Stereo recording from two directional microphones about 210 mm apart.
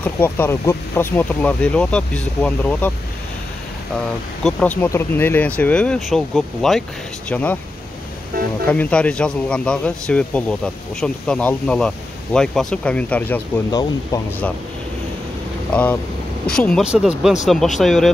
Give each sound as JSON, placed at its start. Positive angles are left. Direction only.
{"t": 0.0, "sound": "speech", "side_deg": 10}
{"t": 4.4, "sound": "speech", "side_deg": 5}
{"t": 8.6, "sound": "speech", "side_deg": 5}
{"t": 13.7, "sound": "speech", "side_deg": 20}
{"t": 15.7, "sound": "speech", "side_deg": 5}